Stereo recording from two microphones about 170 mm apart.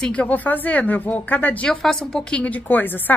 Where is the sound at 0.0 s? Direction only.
5° left (ahead or behind).